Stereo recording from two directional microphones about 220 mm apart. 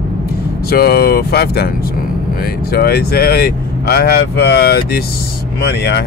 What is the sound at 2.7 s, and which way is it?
Speech, 45° left (ahead or behind).